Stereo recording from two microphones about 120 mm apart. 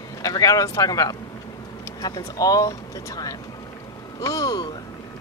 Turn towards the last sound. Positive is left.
turn(degrees=30)  # may be behind; listen again after turning